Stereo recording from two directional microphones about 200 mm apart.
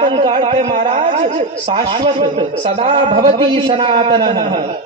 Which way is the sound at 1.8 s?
25° right (ahead or behind).